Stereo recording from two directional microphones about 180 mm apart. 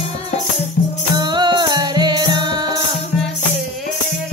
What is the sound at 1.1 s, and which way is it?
Music, 25° right (ahead or behind).